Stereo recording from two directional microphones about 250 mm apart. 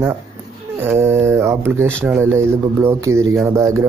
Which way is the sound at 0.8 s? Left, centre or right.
Centre.